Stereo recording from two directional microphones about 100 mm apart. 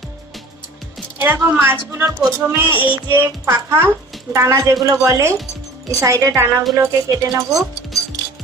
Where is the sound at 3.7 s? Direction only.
20° right (ahead or behind).